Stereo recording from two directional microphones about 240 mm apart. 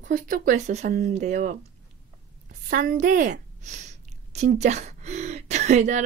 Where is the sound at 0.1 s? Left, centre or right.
Right.